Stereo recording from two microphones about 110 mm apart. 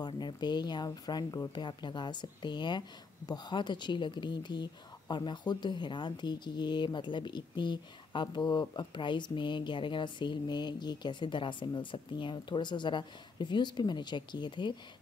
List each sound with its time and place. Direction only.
0.0 s speech: 40° left (ahead or behind)